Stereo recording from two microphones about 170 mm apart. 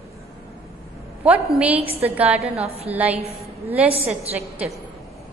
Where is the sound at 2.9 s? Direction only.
10° right (ahead or behind).